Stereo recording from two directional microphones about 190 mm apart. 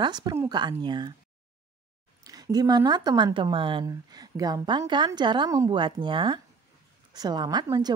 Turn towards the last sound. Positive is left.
turn(degrees=-20)  # may be behind; listen again after turning